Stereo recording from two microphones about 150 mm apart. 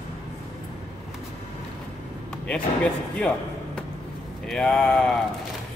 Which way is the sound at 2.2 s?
5° left (ahead or behind).